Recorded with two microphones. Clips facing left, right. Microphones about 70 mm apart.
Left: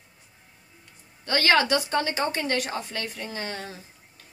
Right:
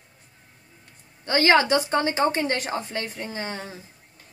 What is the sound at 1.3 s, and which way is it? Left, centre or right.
A woman's voice, right.